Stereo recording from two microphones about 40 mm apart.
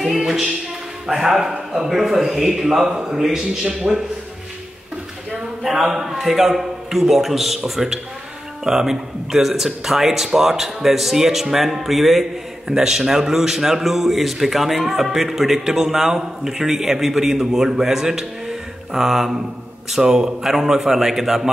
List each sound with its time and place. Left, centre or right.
0.1 s a man's voice: centre
2.9 s a man's voice: right
3.2 s a man's voice: centre
5.6 s a man's voice: centre